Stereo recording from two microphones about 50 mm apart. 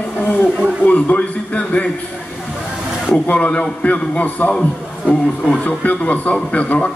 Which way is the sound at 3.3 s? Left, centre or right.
Left.